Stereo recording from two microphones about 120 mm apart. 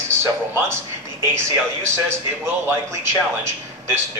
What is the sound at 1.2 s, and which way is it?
A man's voice, 20° right (ahead or behind).